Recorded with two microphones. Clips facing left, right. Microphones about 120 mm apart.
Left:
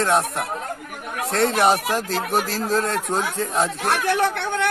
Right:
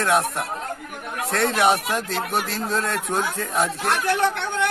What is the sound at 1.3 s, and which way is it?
Speech, 25° left (ahead or behind).